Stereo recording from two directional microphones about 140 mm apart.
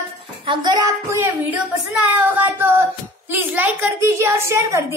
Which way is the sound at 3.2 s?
10° right (ahead or behind).